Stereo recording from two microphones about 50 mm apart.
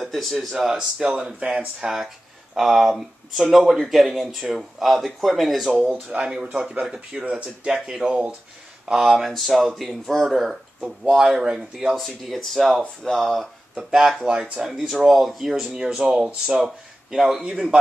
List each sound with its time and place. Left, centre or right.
0.0 s speech: centre
0.7 s speech: right
1.8 s speech: centre
5.7 s speech: centre
8.8 s speech: centre
11.9 s speech: centre
13.4 s speech: centre
15.7 s speech: centre